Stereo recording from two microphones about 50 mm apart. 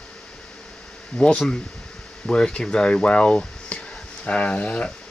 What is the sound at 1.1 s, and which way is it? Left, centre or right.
Speech, centre.